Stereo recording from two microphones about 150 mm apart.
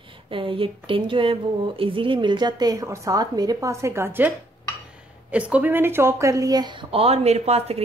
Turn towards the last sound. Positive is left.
turn(degrees=-45)  # may be behind; listen again after turning